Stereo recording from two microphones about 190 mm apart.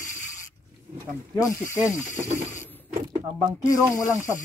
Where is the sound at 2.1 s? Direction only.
35° right (ahead or behind).